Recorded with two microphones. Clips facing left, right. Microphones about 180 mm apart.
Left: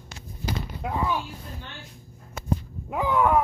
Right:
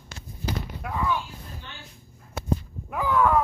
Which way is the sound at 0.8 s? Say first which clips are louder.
Left 5 dB; 20° left (ahead or behind).